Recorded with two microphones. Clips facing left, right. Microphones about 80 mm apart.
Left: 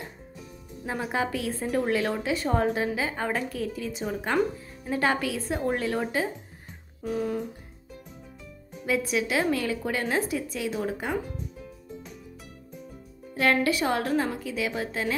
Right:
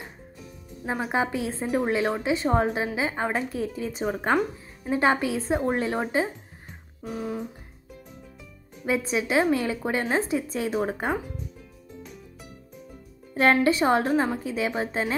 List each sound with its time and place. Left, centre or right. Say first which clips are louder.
1.1 s a woman's voice: right 2 dB; right
7.0 s speech: left 3 dB; centre
8.8 s a woman's voice: right 1 dB; right
13.4 s a woman's voice: right 3 dB; right